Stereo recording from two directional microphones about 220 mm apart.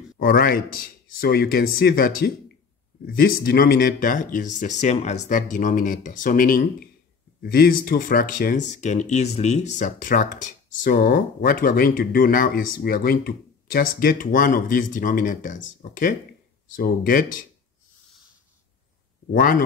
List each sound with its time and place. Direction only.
0.2 s speech: 40° left (ahead or behind)